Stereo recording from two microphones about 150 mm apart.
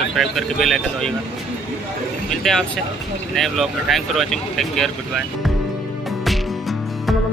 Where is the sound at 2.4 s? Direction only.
5° left (ahead or behind).